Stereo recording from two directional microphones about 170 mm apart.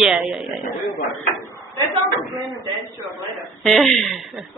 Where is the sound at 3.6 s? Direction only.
Centre (ahead or behind).